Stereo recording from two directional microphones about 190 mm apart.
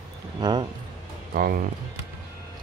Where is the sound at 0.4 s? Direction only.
25° right (ahead or behind).